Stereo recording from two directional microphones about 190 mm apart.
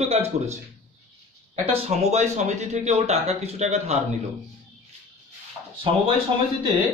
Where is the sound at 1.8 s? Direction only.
35° right (ahead or behind).